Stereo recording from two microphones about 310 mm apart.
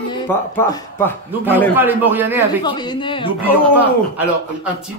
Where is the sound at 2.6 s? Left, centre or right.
Centre.